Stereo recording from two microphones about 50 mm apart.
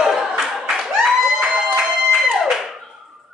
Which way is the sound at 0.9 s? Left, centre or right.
Centre.